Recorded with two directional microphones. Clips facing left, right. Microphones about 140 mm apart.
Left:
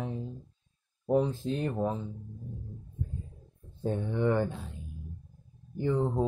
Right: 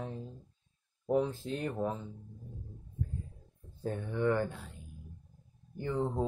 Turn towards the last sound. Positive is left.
turn(degrees=15)  # may be behind; listen again after turning